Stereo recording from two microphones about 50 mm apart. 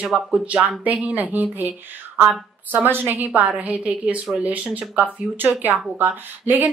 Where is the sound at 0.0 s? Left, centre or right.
Right.